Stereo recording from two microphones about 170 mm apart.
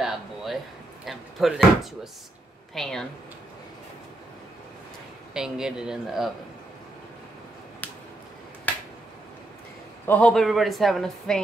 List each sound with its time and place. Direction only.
0.0 s a sound: centre (ahead or behind)
1.0 s speech: centre (ahead or behind)
5.3 s speech: 5° right (ahead or behind)
7.8 s a sound: 10° left (ahead or behind)
8.7 s finger snapping: 10° left (ahead or behind)
10.0 s speech: 10° left (ahead or behind)